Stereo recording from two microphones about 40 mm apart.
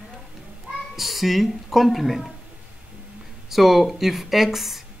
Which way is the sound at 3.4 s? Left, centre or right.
Centre.